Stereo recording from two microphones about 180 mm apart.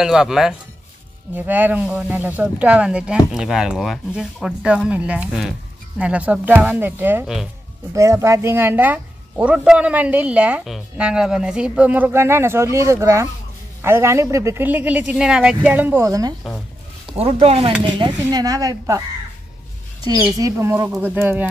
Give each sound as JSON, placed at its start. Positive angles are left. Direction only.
{"t": 0.0, "sound": "a woman's voice", "side_deg": -5}
{"t": 17.2, "sound": "speech", "side_deg": -35}
{"t": 20.1, "sound": "a woman's voice", "side_deg": -20}